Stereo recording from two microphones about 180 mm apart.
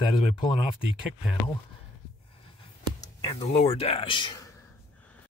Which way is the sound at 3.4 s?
35° left (ahead or behind).